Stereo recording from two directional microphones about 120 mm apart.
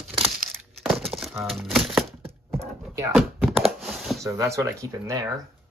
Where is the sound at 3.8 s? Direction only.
Centre (ahead or behind).